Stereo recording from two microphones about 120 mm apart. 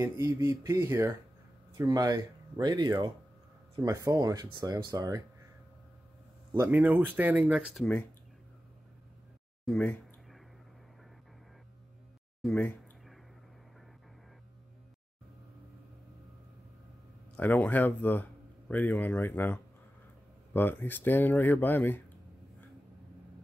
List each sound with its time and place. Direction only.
0.0 s speech: 20° right (ahead or behind)
6.6 s speech: 15° right (ahead or behind)
7.8 s speech: 10° left (ahead or behind)
9.7 s speech: 10° left (ahead or behind)
12.4 s speech: 10° left (ahead or behind)
17.4 s speech: 15° left (ahead or behind)